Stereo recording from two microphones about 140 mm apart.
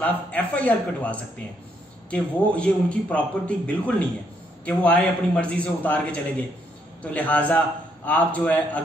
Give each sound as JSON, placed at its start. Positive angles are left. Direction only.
{"t": 0.0, "sound": "speech", "side_deg": 10}